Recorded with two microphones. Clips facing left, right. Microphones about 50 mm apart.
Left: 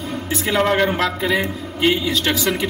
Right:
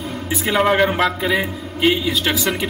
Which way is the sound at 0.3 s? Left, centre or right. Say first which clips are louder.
Right 1 dB; centre.